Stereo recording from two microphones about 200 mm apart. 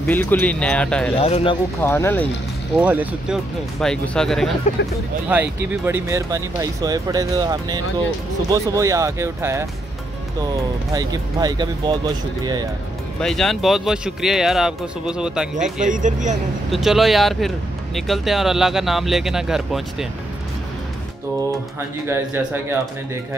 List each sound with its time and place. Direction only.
0.0 s speech: 10° left (ahead or behind)
1.1 s speech: 30° left (ahead or behind)
1.8 s speech: 10° left (ahead or behind)
2.8 s speech: 10° right (ahead or behind)
3.8 s speech: 5° left (ahead or behind); by 11.9 s 20° right (ahead or behind)
13.2 s speech: centre (ahead or behind)
15.9 s speech: 40° right (ahead or behind)
16.7 s speech: centre (ahead or behind)
21.7 s speech: 10° right (ahead or behind)